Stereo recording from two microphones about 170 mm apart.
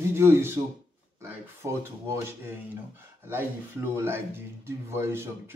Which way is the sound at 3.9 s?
15° right (ahead or behind).